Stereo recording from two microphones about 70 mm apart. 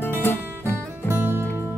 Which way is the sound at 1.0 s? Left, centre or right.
Right.